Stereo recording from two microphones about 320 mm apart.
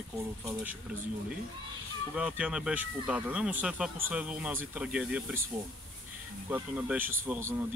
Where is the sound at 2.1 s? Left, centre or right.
Centre.